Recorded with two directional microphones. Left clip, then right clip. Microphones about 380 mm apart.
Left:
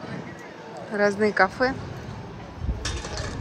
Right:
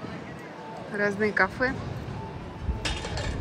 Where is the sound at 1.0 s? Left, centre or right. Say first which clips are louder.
Left 4 dB; centre.